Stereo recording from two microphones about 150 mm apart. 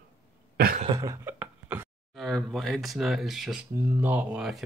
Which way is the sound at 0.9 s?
20° right (ahead or behind).